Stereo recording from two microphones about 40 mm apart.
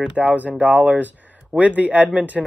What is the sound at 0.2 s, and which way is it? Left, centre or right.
A man's voice, right.